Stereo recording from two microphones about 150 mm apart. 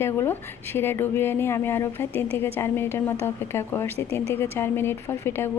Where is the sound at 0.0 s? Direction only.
15° left (ahead or behind).